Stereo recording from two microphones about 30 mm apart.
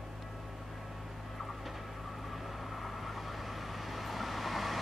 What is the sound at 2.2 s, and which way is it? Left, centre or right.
Vehicle, centre.